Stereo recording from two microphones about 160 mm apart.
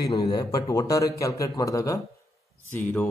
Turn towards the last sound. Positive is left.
turn(degrees=10)  # may be behind; listen again after turning